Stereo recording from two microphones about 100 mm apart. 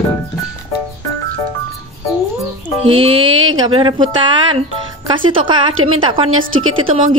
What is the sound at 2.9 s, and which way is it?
Speech, 60° right (ahead or behind).